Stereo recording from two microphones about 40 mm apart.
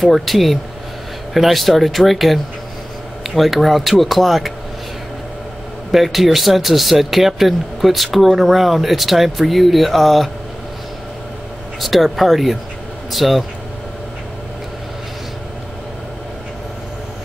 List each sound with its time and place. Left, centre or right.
0.0 s speech: centre
5.9 s speech: centre
11.8 s speech: centre